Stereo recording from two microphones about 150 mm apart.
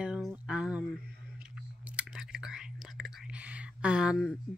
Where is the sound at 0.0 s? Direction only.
5° right (ahead or behind).